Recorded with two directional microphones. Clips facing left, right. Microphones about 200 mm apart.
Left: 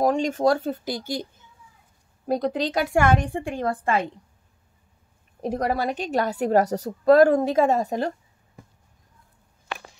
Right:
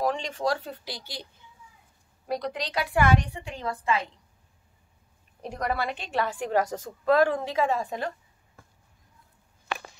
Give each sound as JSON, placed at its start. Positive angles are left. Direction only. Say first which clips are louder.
{"t": 0.0, "sound": "a woman's voice", "louder": "left 7 dB", "side_deg": 45}
{"t": 2.2, "sound": "a woman's voice", "louder": "left 7 dB", "side_deg": 45}
{"t": 5.4, "sound": "a woman's voice", "louder": "left 5 dB", "side_deg": 40}